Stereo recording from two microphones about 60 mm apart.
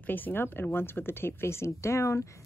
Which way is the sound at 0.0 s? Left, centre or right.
Left.